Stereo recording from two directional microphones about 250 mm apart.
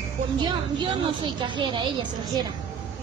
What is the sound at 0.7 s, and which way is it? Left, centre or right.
A woman's voice, centre.